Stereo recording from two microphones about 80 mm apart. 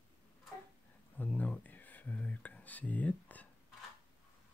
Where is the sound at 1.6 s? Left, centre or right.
Left.